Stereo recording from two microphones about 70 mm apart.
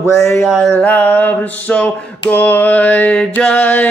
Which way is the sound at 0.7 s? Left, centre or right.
Left.